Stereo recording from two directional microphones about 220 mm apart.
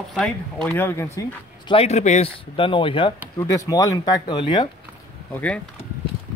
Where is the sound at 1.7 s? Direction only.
30° left (ahead or behind).